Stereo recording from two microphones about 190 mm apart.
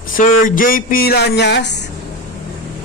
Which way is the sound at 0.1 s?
45° left (ahead or behind).